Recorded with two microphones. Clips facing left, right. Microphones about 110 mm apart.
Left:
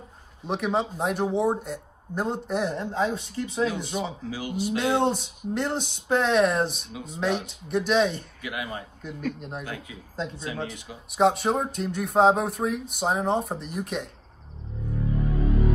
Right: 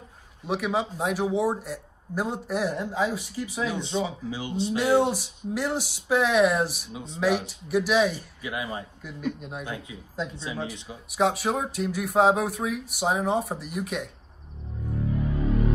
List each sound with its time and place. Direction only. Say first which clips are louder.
0.5 s a man's voice: left 1 dB; 5° right (ahead or behind)
3.7 s speech: right 2 dB; 25° right (ahead or behind)
4.9 s a man's voice: right 2 dB; 10° right (ahead or behind)
6.9 s speech: even; 25° right (ahead or behind)
7.2 s a man's voice: right 2 dB; 5° right (ahead or behind)
8.4 s speech: right 1 dB; 30° right (ahead or behind)
9.0 s a man's voice: left 2 dB; 5° right (ahead or behind)
10.3 s speech: even; 20° right (ahead or behind)
11.1 s a man's voice: left 3 dB; centre (ahead or behind)